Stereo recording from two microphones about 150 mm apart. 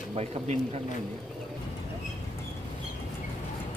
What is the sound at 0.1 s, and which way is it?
Speech, 45° right (ahead or behind).